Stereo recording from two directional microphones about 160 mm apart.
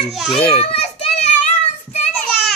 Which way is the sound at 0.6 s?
40° left (ahead or behind).